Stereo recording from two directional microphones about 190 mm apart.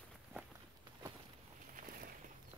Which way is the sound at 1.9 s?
50° right (ahead or behind).